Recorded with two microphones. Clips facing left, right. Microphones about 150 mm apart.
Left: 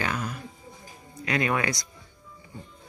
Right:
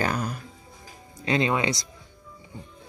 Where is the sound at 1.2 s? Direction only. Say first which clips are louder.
Right 2 dB; 25° right (ahead or behind).